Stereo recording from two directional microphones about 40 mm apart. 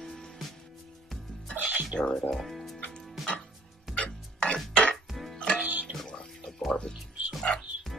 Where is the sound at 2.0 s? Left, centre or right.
Centre.